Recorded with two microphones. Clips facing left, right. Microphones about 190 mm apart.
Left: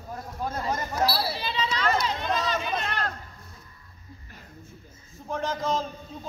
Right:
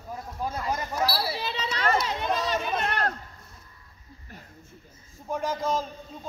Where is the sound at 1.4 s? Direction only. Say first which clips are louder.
Left 2 dB; 60° right (ahead or behind).